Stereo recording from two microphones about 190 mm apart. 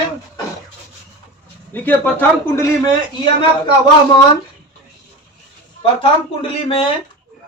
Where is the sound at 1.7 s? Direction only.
10° left (ahead or behind).